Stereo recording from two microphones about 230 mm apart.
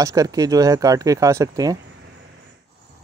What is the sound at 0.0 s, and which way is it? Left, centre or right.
Speech, centre.